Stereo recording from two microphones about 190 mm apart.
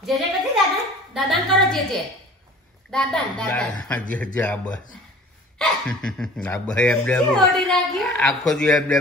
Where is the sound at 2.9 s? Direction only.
5° left (ahead or behind).